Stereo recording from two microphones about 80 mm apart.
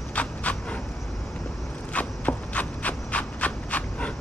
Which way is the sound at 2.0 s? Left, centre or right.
Centre.